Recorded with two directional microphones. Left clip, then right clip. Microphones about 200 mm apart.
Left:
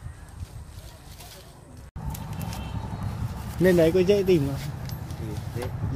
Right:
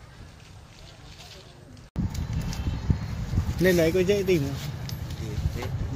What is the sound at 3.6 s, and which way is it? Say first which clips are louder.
Speech: left 2 dB; 20° left (ahead or behind).